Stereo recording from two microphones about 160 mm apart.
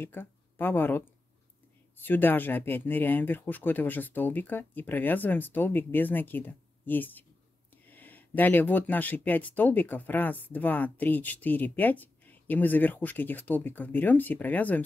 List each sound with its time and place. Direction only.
0.0 s speech: 15° left (ahead or behind)